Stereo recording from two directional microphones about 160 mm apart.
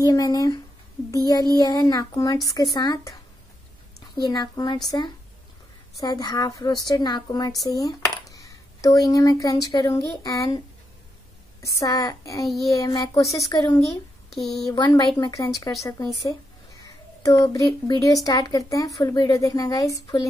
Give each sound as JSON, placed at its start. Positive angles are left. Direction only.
{"t": 0.0, "sound": "a woman's voice", "side_deg": 20}
{"t": 4.2, "sound": "a woman's voice", "side_deg": 25}
{"t": 5.9, "sound": "a woman's voice", "side_deg": 25}
{"t": 11.8, "sound": "a woman's voice", "side_deg": 25}
{"t": 14.3, "sound": "speech", "side_deg": 0}
{"t": 14.7, "sound": "a woman's voice", "side_deg": 25}